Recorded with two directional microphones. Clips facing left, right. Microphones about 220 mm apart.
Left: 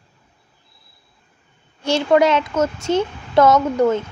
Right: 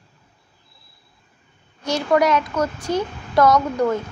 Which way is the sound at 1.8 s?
25° left (ahead or behind).